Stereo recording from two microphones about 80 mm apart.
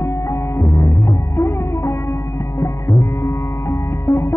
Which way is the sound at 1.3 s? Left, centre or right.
Left.